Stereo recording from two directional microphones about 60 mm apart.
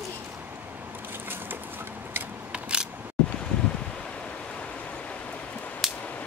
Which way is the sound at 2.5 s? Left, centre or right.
Centre.